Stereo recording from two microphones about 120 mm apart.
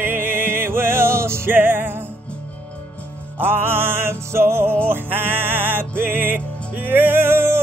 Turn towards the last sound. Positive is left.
turn(degrees=-20)  # may be behind; listen again after turning